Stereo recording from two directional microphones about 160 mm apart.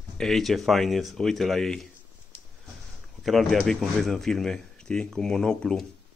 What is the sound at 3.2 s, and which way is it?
Speech, centre (ahead or behind).